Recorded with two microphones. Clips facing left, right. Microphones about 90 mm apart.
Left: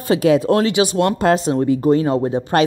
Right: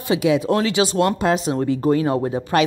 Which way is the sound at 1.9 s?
25° left (ahead or behind).